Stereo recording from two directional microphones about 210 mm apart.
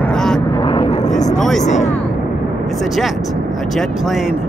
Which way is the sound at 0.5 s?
20° left (ahead or behind).